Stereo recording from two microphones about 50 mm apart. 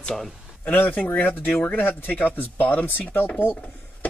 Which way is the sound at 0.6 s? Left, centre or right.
Left.